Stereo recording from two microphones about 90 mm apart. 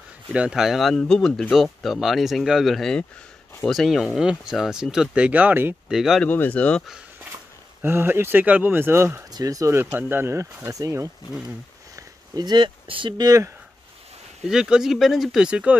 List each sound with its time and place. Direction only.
0.3 s speech: 10° right (ahead or behind)
5.9 s speech: 5° right (ahead or behind)
6.2 s speech: 20° left (ahead or behind)
7.8 s speech: 25° right (ahead or behind)
9.3 s speech: 40° right (ahead or behind)
9.8 s speech: 20° right (ahead or behind); by 11.1 s 40° right (ahead or behind)
11.9 s a sound: 50° right (ahead or behind); by 13.1 s 75° right (ahead or behind)
13.2 s speech: 40° right (ahead or behind)
14.5 s speech: 5° right (ahead or behind)
15.4 s speech: 15° right (ahead or behind)